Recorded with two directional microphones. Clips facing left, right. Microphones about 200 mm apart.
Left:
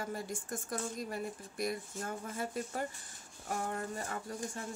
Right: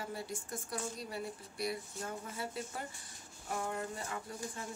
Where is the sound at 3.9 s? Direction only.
45° left (ahead or behind).